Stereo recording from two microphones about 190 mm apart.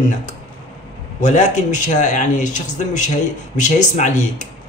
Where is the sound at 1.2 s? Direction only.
40° left (ahead or behind).